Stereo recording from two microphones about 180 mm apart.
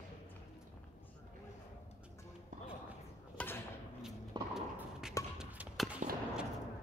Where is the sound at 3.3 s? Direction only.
10° left (ahead or behind).